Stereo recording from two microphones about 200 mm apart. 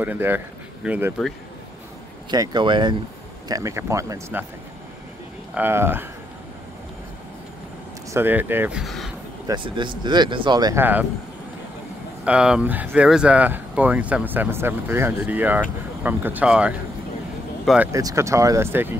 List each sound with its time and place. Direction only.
0.0 s speech: 10° right (ahead or behind)
2.3 s speech: 20° right (ahead or behind)
5.5 s speech: 10° right (ahead or behind)
8.1 s speech: 10° right (ahead or behind)
9.5 s speech: 25° right (ahead or behind)
12.3 s speech: 5° right (ahead or behind)
17.9 s speech: 15° right (ahead or behind)